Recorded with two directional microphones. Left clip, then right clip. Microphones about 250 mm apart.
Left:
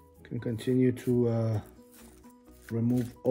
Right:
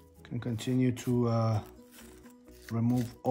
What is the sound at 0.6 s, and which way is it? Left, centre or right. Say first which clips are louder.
Speech: left 4 dB; centre.